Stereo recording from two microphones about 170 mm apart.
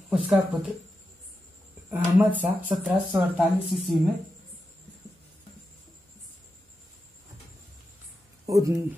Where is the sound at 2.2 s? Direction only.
10° right (ahead or behind).